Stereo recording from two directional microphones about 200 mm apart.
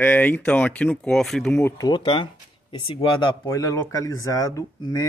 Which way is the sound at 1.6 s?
20° left (ahead or behind).